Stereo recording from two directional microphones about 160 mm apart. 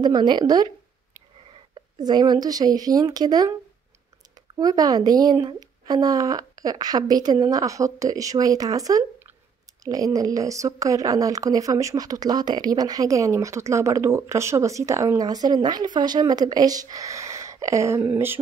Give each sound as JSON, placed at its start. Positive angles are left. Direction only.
{"t": 0.0, "sound": "a woman's voice", "side_deg": -25}
{"t": 2.0, "sound": "a woman's voice", "side_deg": -25}
{"t": 4.6, "sound": "a woman's voice", "side_deg": -25}